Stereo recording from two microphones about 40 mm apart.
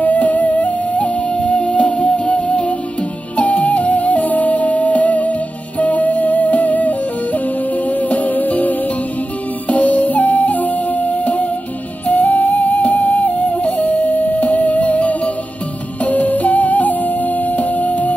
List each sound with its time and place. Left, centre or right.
0.0 s music: left
3.3 s music: left